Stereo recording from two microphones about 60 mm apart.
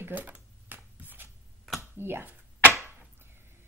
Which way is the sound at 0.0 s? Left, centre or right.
Right.